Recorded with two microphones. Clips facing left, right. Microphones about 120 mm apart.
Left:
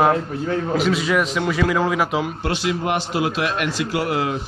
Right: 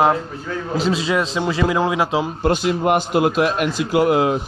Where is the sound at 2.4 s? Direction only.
45° right (ahead or behind).